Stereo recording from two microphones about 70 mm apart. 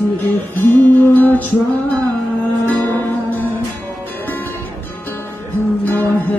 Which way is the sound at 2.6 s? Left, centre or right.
Left.